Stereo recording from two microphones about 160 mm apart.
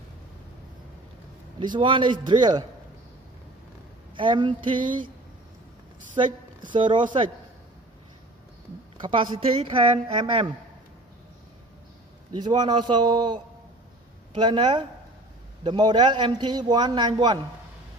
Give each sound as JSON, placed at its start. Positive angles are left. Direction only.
{"t": 1.6, "sound": "a man's voice", "side_deg": -30}
{"t": 4.1, "sound": "a woman's voice", "side_deg": -30}
{"t": 6.2, "sound": "a woman's voice", "side_deg": -35}
{"t": 9.0, "sound": "a woman's voice", "side_deg": -30}
{"t": 12.4, "sound": "a man's voice", "side_deg": -25}